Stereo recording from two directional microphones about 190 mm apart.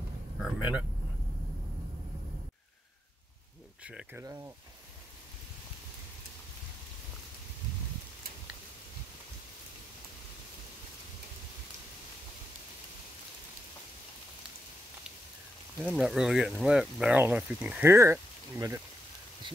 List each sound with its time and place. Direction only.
0.4 s speech: 5° right (ahead or behind)
3.8 s speech: 10° right (ahead or behind)
15.8 s speech: centre (ahead or behind)